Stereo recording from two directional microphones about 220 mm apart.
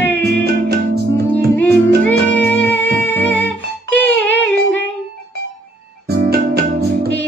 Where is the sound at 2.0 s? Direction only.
5° left (ahead or behind).